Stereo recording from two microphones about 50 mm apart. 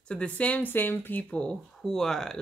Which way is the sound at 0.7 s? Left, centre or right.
Left.